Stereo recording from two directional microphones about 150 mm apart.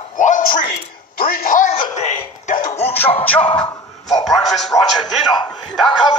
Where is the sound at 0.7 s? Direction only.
70° left (ahead or behind).